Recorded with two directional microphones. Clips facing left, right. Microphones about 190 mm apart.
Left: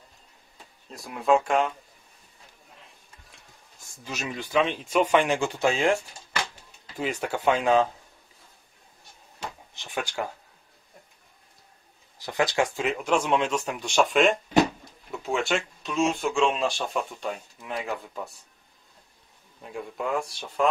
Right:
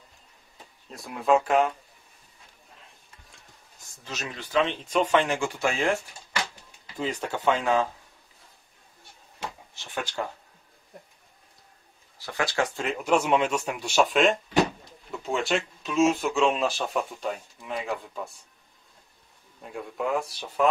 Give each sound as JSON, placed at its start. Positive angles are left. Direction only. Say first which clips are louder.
{"t": 0.8, "sound": "speech", "louder": "left 1 dB", "side_deg": 0}
{"t": 4.0, "sound": "speech", "louder": "left 3 dB", "side_deg": 10}
{"t": 7.0, "sound": "speech", "louder": "left 1 dB", "side_deg": 10}
{"t": 9.8, "sound": "speech", "louder": "left 1 dB", "side_deg": 15}
{"t": 12.2, "sound": "speech", "louder": "left 3 dB", "side_deg": 15}
{"t": 12.8, "sound": "speech", "louder": "right 1 dB", "side_deg": -5}
{"t": 19.6, "sound": "speech", "louder": "right 1 dB", "side_deg": 0}